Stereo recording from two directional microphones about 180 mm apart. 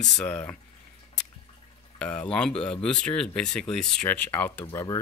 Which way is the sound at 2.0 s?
5° left (ahead or behind).